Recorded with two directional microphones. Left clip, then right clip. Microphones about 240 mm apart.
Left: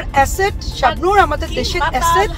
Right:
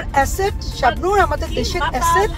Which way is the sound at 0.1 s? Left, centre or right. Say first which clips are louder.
Left 3 dB; centre.